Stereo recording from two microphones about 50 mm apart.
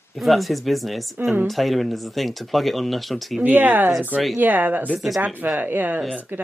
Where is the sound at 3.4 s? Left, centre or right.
Right.